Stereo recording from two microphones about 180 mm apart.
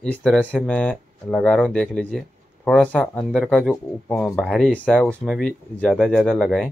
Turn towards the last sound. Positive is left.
turn(degrees=0)  # may be behind; listen again after turning